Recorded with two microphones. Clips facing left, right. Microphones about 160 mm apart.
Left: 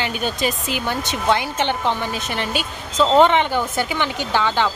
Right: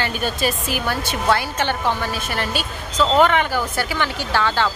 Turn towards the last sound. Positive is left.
turn(degrees=15)  # may be behind; listen again after turning